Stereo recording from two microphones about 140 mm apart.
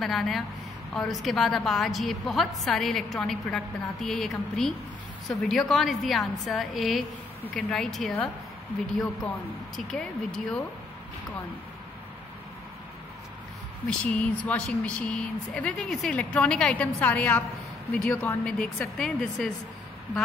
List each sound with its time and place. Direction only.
0.0 s a woman's voice: centre (ahead or behind)
9.8 s a woman's voice: 5° left (ahead or behind)
13.8 s a woman's voice: 10° left (ahead or behind)